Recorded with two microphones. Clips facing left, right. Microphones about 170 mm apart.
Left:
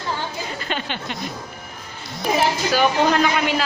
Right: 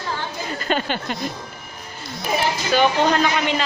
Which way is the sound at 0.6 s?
45° right (ahead or behind).